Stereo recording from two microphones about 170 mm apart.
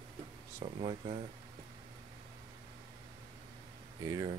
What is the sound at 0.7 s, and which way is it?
Speech, 40° right (ahead or behind).